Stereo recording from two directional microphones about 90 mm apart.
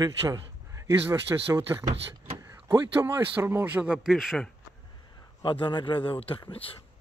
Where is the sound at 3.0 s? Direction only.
25° right (ahead or behind).